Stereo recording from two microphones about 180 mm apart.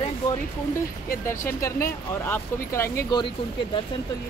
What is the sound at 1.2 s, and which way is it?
Speech, 15° left (ahead or behind).